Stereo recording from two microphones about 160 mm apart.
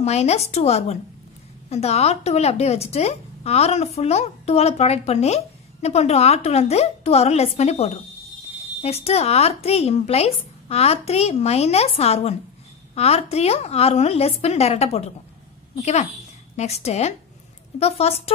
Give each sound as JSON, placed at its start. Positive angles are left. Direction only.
{"t": 0.0, "sound": "a woman's voice", "side_deg": 40}